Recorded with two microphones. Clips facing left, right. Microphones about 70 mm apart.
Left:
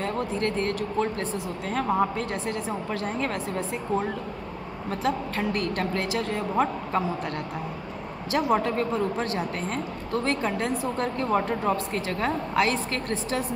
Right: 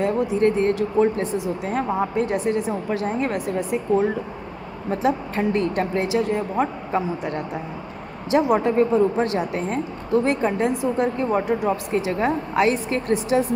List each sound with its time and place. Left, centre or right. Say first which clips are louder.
0.0 s a woman's voice: right 8 dB; centre